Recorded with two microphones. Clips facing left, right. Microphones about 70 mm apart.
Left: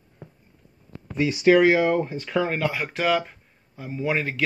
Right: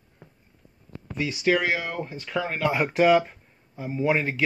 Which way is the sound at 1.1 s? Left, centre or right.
Left.